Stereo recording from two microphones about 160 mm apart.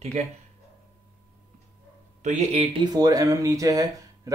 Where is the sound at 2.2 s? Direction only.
45° right (ahead or behind).